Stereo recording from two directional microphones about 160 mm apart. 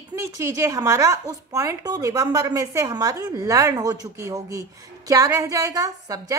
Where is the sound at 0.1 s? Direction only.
20° right (ahead or behind).